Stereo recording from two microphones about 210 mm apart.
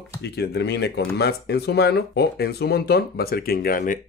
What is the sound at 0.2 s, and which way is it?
Speech, 55° left (ahead or behind).